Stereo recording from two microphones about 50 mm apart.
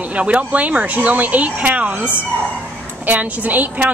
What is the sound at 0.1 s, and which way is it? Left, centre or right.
Speech, right.